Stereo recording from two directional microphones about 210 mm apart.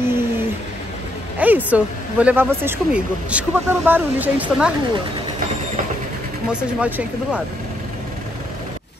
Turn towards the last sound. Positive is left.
turn(degrees=-5)  # may be behind; listen again after turning